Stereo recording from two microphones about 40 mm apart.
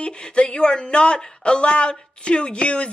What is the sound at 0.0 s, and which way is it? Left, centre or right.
Speech, left.